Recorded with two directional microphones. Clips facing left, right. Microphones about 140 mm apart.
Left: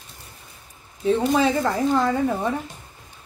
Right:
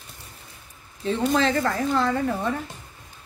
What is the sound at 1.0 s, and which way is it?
A woman's voice, 10° left (ahead or behind).